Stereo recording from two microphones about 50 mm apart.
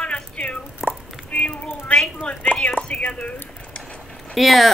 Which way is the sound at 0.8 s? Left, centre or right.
Centre.